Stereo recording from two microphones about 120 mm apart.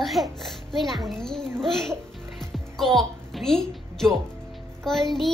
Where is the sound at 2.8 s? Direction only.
Centre (ahead or behind).